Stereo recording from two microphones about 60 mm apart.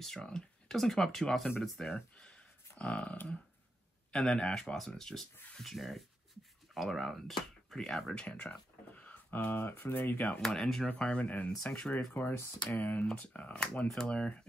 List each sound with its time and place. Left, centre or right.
0.0 s speech: centre; by 10.2 s left
10.5 s speech: centre
10.9 s speech: left
11.5 s speech: centre
12.1 s speech: left; by 14.4 s centre